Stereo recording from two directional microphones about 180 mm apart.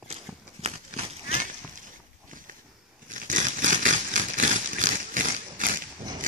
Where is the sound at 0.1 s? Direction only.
35° right (ahead or behind).